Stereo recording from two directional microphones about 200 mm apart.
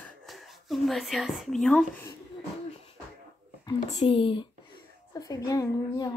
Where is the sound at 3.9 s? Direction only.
30° left (ahead or behind).